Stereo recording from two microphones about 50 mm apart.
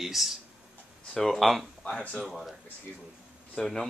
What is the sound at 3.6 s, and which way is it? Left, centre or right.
Speech, centre.